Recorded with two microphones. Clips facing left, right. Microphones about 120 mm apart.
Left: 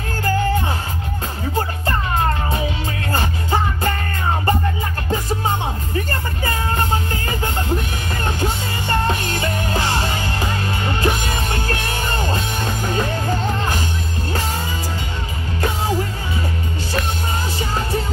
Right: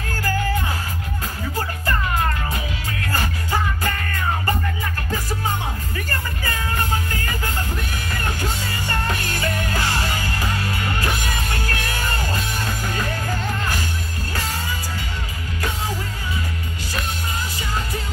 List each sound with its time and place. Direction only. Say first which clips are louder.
0.2 s music: left 4 dB; 25° left (ahead or behind)
5.9 s music: left 5 dB; 25° left (ahead or behind)
17.6 s music: left 5 dB; 30° left (ahead or behind)